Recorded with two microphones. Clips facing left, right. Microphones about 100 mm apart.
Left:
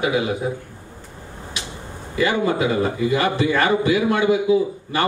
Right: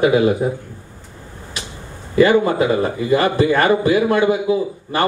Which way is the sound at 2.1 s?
45° right (ahead or behind).